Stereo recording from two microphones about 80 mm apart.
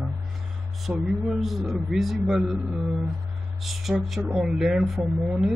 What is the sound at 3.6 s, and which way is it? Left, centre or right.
Speech, centre.